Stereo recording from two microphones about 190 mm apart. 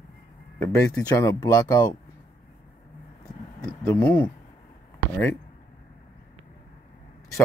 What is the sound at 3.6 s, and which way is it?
Speech, 10° left (ahead or behind).